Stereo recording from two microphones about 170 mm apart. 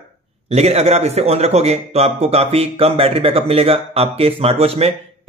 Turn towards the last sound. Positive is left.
turn(degrees=-35)  # may be behind; listen again after turning